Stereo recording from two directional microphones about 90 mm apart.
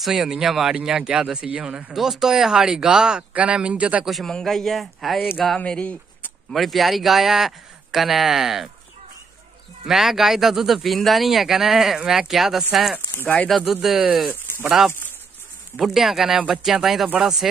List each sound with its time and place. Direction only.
0.0 s speech: 5° right (ahead or behind)
4.1 s speech: 5° left (ahead or behind)
5.6 s speech: 15° left (ahead or behind)
6.5 s speech: centre (ahead or behind)
9.8 s speech: 5° right (ahead or behind)
13.1 s speech: 20° left (ahead or behind)
13.5 s speech: 5° right (ahead or behind)